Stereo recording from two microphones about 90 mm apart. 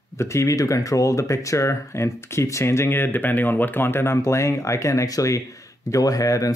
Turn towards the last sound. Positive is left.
turn(degrees=40)  # may be behind; listen again after turning